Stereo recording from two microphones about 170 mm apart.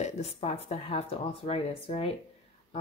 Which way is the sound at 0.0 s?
40° left (ahead or behind).